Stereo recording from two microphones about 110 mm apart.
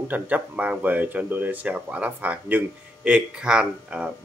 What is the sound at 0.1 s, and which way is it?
Speech, 15° right (ahead or behind).